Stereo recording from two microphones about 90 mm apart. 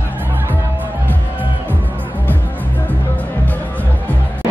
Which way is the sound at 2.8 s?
20° left (ahead or behind).